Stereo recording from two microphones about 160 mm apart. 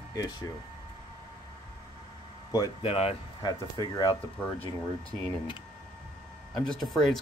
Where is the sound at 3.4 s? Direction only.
25° left (ahead or behind).